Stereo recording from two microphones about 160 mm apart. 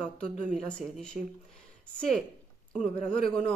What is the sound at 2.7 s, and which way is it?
Speech, 5° left (ahead or behind).